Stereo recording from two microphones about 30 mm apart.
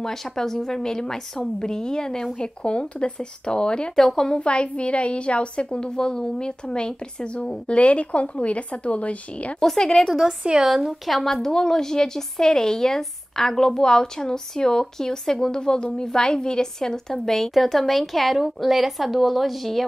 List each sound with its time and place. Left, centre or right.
0.0 s speech: centre
2.3 s a woman's voice: left
3.9 s speech: centre
4.4 s a woman's voice: left
10.0 s a woman's voice: centre
10.6 s a woman's voice: centre
11.4 s speech: left
17.6 s a woman's voice: centre